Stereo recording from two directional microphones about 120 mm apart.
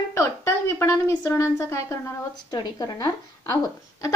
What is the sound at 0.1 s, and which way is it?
A woman's voice, 20° left (ahead or behind).